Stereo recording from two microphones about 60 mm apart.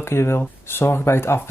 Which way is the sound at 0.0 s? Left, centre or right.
Left.